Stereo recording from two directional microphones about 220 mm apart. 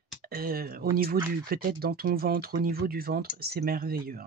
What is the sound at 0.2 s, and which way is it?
Speech, 40° right (ahead or behind).